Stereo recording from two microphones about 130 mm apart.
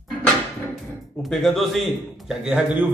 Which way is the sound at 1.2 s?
Centre (ahead or behind).